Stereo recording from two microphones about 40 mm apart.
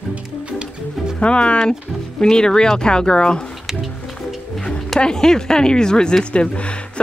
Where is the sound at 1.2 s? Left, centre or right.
Left.